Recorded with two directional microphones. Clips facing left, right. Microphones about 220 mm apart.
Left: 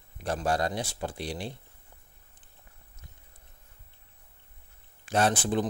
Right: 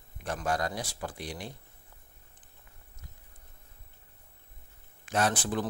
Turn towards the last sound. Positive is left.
turn(degrees=25)  # may be behind; listen again after turning